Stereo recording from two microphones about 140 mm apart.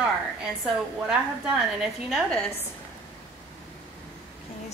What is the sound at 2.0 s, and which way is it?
Speech, 5° left (ahead or behind).